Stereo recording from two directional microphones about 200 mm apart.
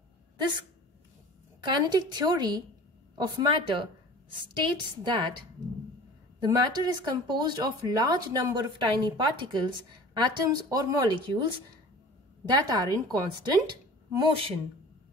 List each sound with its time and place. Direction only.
1.7 s speech: 20° right (ahead or behind)
6.4 s speech: 20° right (ahead or behind)
12.4 s speech: 20° right (ahead or behind)